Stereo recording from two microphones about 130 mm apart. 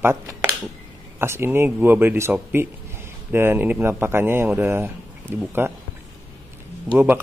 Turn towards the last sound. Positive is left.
turn(degrees=-15)  # may be behind; listen again after turning